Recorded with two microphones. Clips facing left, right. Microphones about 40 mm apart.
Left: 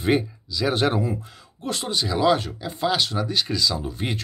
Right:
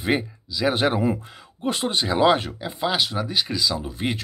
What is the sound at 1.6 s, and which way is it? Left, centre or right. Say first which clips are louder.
Speech: right 3 dB; right.